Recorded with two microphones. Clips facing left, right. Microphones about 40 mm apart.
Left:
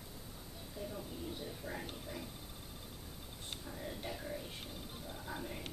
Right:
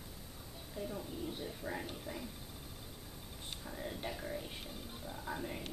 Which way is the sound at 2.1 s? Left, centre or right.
Right.